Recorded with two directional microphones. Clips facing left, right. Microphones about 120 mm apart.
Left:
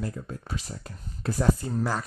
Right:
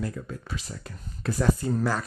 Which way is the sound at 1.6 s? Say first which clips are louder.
Right 2 dB; 15° left (ahead or behind).